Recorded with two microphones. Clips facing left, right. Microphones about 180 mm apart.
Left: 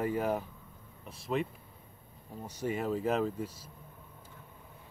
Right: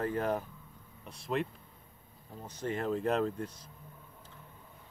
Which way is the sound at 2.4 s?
10° left (ahead or behind).